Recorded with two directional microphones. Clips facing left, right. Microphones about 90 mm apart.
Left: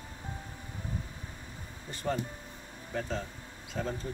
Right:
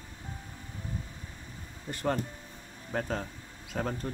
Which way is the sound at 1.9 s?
55° right (ahead or behind).